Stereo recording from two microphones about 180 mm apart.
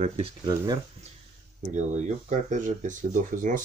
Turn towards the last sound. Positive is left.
turn(degrees=-45)  # may be behind; listen again after turning